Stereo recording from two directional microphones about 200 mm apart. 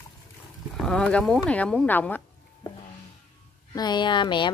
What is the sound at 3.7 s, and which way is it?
Speech, 20° left (ahead or behind).